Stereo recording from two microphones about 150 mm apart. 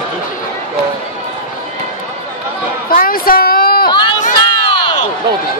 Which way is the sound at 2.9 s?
75° left (ahead or behind).